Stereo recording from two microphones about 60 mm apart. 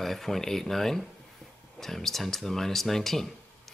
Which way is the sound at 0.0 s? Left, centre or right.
Centre.